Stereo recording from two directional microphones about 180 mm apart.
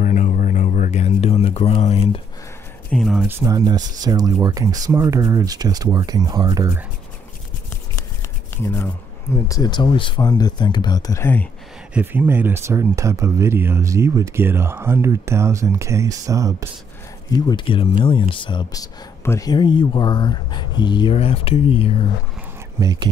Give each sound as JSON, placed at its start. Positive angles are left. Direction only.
{"t": 0.0, "sound": "a sound", "side_deg": 45}
{"t": 2.9, "sound": "speech", "side_deg": 0}
{"t": 3.3, "sound": "speech", "side_deg": -15}
{"t": 8.6, "sound": "speech", "side_deg": 10}
{"t": 11.9, "sound": "speech", "side_deg": -10}
{"t": 17.5, "sound": "speech", "side_deg": 25}
{"t": 22.8, "sound": "speech", "side_deg": -20}